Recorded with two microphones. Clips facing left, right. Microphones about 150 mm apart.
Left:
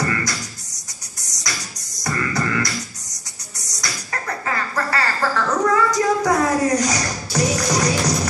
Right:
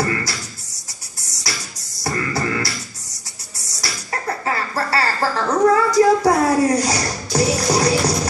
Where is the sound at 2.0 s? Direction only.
30° right (ahead or behind).